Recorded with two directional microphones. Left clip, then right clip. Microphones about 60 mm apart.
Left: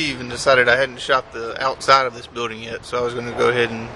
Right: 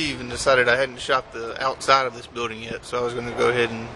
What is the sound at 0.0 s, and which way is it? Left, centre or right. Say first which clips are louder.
Speech: left 3 dB; centre.